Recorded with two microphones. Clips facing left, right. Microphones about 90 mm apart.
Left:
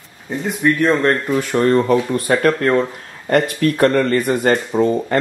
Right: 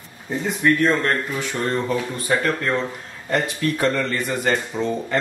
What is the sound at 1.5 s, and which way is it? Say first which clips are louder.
Speech: left 9 dB; 55° left (ahead or behind).